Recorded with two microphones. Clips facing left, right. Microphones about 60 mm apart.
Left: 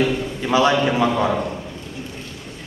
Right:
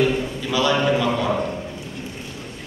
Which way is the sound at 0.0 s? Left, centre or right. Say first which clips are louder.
Even; left.